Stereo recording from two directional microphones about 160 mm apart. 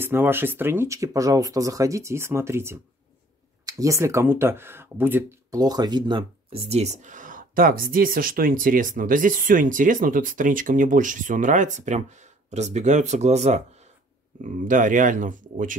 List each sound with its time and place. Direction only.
0.0 s speech: 15° right (ahead or behind)
5.6 s speech: 25° right (ahead or behind); by 13.8 s 45° right (ahead or behind)
14.4 s speech: 55° right (ahead or behind)